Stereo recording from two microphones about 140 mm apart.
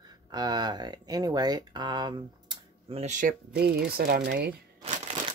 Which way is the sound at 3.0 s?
65° right (ahead or behind).